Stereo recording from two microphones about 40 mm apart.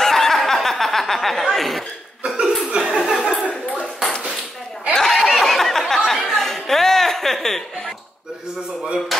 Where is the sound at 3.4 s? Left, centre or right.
Left.